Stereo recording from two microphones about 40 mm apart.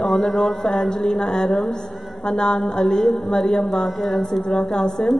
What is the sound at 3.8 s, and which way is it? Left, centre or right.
Speech, centre.